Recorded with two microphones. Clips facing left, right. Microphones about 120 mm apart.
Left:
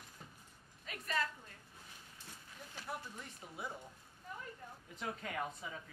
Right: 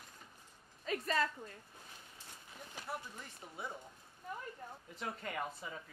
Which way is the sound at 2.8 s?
Centre (ahead or behind).